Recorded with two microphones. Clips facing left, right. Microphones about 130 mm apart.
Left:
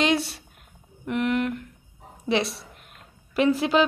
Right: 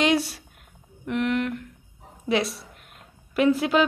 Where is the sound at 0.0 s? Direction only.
10° right (ahead or behind).